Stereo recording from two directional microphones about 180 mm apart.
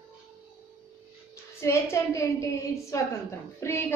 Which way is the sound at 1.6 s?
15° left (ahead or behind).